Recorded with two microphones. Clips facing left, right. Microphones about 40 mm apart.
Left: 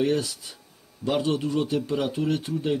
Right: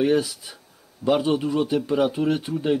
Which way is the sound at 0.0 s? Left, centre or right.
Centre.